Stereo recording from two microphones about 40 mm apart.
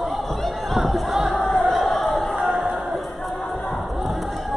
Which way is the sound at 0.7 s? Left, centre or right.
Centre.